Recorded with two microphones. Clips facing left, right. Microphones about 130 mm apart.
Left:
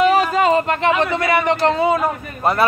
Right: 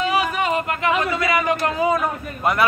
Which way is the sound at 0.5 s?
30° left (ahead or behind).